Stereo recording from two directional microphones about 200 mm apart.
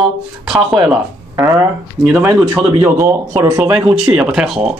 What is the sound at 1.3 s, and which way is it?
Speech, 15° right (ahead or behind).